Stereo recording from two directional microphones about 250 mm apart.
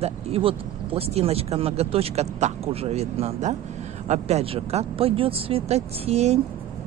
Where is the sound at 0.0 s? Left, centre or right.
Right.